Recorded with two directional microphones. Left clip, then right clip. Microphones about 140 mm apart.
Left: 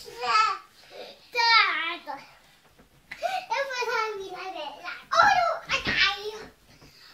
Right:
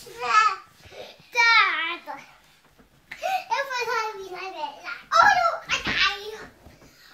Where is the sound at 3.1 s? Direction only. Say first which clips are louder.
Right 3 dB; 35° left (ahead or behind).